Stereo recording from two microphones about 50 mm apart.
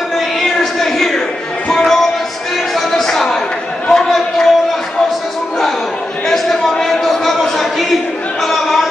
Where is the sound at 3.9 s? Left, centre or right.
Centre.